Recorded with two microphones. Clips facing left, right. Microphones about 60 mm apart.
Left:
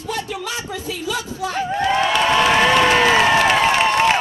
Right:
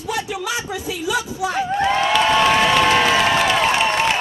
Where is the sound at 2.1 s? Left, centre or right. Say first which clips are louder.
Right 1 dB; centre.